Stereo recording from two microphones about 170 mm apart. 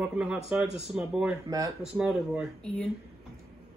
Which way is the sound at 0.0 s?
5° right (ahead or behind).